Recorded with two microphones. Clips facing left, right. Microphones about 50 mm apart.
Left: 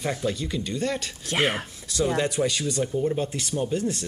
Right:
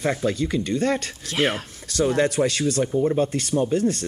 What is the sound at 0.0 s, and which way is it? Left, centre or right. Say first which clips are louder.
Speech: right 5 dB; right.